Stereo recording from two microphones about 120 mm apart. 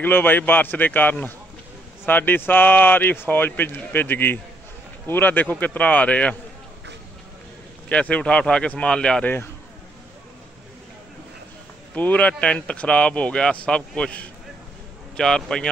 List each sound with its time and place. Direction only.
0.0 s speech: 15° left (ahead or behind)
7.9 s speech: 10° left (ahead or behind)
11.9 s a man's voice: 15° left (ahead or behind)